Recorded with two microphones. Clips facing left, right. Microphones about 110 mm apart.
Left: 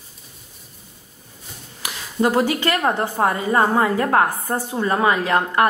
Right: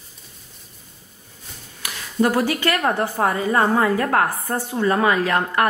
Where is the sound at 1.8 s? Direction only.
20° left (ahead or behind).